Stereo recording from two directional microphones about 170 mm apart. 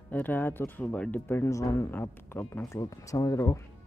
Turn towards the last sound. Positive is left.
turn(degrees=20)  # may be behind; listen again after turning